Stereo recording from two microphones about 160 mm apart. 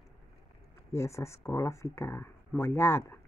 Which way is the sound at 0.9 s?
15° left (ahead or behind).